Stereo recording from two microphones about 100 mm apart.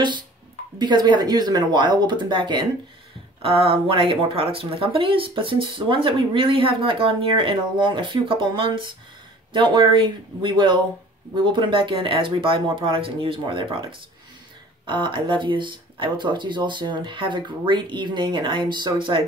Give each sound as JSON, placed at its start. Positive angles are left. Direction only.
{"t": 0.7, "sound": "speech", "side_deg": -45}
{"t": 3.4, "sound": "speech", "side_deg": -65}
{"t": 14.9, "sound": "speech", "side_deg": -55}